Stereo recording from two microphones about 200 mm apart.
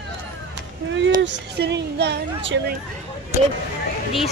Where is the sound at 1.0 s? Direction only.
60° right (ahead or behind).